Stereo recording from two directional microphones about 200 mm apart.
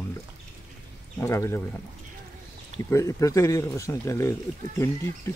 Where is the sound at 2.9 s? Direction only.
15° left (ahead or behind).